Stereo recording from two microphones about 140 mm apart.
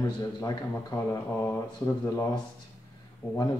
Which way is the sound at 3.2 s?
15° left (ahead or behind).